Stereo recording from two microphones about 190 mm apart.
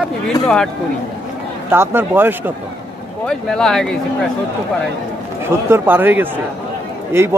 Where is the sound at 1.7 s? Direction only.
10° right (ahead or behind).